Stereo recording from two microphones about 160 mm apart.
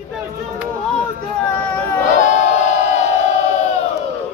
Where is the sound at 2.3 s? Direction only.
45° left (ahead or behind).